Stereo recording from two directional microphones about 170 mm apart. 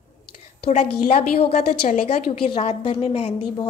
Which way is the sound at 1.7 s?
55° left (ahead or behind).